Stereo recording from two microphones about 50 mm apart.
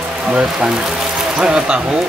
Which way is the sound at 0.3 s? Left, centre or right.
Centre.